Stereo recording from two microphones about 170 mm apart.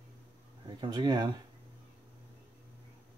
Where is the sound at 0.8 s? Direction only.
25° right (ahead or behind).